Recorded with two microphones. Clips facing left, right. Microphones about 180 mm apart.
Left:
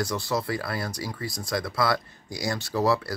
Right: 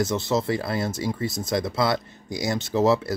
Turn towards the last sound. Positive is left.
turn(degrees=-20)  # may be behind; listen again after turning